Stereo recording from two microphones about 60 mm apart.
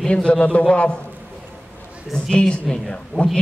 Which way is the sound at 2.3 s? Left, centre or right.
Centre.